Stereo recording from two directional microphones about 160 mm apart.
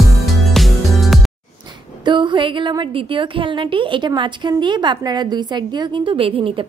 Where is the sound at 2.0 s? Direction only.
30° right (ahead or behind).